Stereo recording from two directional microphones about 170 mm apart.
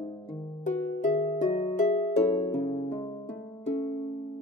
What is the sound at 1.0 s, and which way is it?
Harp, 45° left (ahead or behind).